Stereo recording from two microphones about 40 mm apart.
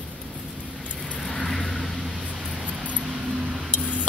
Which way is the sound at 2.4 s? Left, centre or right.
Centre.